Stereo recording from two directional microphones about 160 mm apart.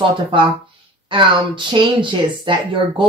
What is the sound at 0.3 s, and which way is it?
Speech, 30° right (ahead or behind).